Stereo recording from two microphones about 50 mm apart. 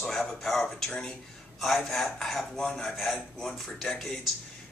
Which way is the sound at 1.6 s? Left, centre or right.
Centre.